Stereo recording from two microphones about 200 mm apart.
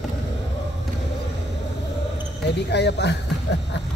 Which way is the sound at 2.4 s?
60° left (ahead or behind).